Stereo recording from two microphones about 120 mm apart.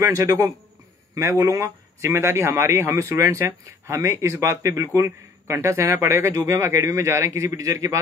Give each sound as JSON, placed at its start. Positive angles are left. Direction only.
{"t": 0.0, "sound": "a man's voice", "side_deg": -25}